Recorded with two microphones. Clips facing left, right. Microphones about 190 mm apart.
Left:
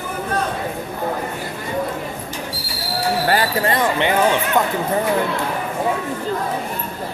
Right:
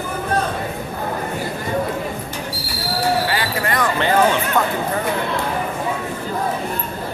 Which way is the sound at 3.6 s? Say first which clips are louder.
Left 1 dB; 25° left (ahead or behind).